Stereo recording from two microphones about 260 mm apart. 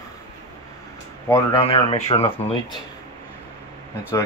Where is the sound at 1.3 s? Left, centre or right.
Centre.